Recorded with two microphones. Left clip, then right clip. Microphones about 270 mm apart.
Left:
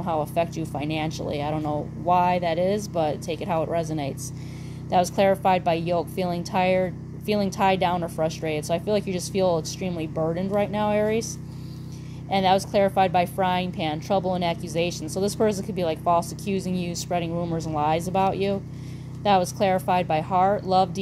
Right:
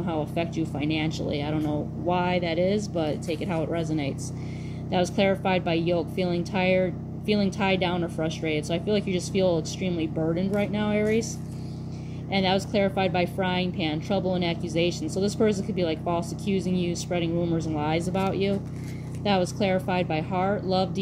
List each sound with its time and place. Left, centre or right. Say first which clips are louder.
0.0 s a woman's voice: left 4 dB; left
12.3 s a woman's voice: left 4 dB; left